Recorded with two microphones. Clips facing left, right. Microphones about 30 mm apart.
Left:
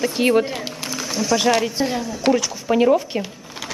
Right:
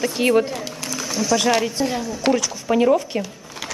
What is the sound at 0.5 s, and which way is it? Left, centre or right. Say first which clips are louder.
Speech: left 1 dB; left.